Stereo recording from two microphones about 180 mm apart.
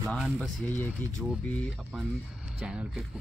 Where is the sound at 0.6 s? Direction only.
10° left (ahead or behind).